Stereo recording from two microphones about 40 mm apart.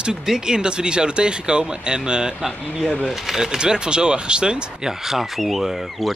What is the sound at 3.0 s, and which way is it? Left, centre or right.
Speech, centre.